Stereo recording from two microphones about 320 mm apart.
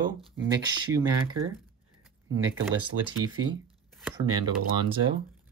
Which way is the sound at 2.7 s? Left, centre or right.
Right.